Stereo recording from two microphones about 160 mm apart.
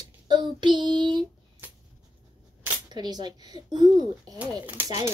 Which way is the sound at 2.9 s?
25° right (ahead or behind).